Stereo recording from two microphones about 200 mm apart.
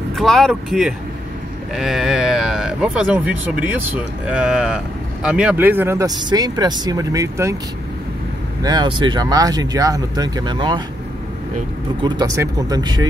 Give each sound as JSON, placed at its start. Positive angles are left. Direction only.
{"t": 0.1, "sound": "speech", "side_deg": 0}
{"t": 8.6, "sound": "speech", "side_deg": -20}
{"t": 12.0, "sound": "speech", "side_deg": -20}